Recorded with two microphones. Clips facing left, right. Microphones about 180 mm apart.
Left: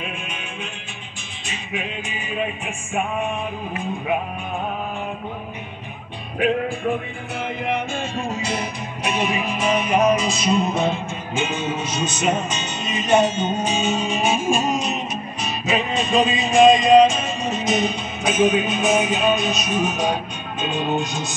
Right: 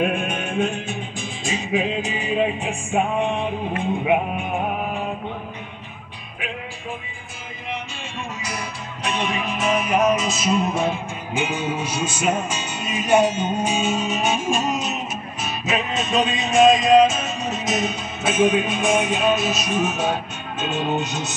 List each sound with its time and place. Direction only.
0.0 s music: 55° right (ahead or behind)
1.8 s music: 35° right (ahead or behind)
6.4 s music: 50° left (ahead or behind)
8.4 s music: 25° left (ahead or behind)
9.0 s music: 5° left (ahead or behind)
21.0 s music: 10° left (ahead or behind)